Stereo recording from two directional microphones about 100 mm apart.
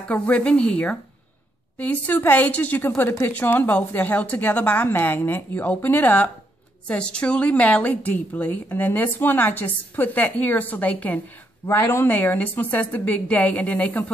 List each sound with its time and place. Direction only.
0.1 s a woman's voice: 10° left (ahead or behind)
11.6 s a woman's voice: 25° left (ahead or behind)